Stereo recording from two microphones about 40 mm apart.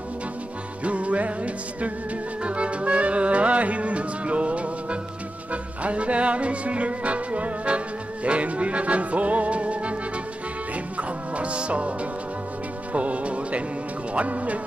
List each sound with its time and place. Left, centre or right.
0.8 s music: right
11.0 s music: right